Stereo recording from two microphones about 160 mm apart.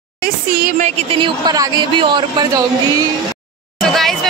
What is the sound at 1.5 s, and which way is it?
Speech, 25° right (ahead or behind).